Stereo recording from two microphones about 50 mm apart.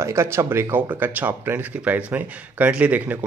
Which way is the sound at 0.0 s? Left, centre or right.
Right.